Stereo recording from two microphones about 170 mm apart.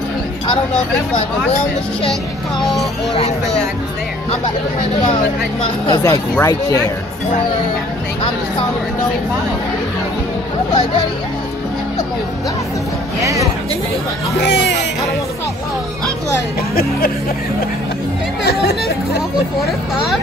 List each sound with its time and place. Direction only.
2.6 s speech: centre (ahead or behind)
5.9 s speech: 20° left (ahead or behind)
13.2 s speech: 20° right (ahead or behind)
14.4 s speech: 90° left